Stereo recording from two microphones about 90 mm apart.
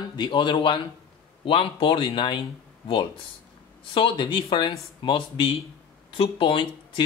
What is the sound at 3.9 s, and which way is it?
Speech, 70° left (ahead or behind).